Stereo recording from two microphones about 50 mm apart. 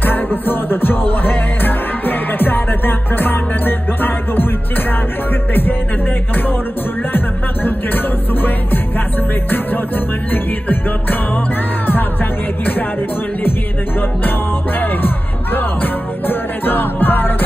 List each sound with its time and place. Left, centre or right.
0.0 s music: left
5.5 s music: left
7.1 s music: left
10.3 s music: left
14.8 s music: left